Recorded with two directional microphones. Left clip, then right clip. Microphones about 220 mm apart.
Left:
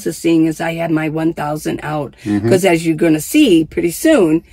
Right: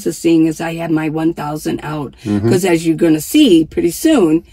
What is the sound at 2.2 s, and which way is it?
Speech, 15° left (ahead or behind).